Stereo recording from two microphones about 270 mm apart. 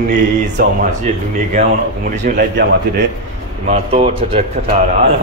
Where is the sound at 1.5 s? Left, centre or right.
Right.